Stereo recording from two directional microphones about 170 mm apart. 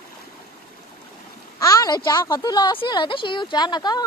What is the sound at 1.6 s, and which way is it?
A woman's voice, 20° left (ahead or behind).